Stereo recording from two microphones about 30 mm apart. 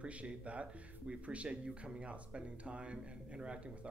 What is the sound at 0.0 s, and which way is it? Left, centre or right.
Speech, right.